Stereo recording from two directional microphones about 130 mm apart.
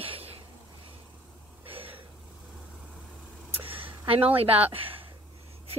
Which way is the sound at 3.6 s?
45° right (ahead or behind).